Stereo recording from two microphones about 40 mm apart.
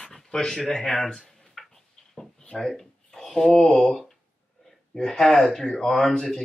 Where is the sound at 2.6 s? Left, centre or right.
Centre.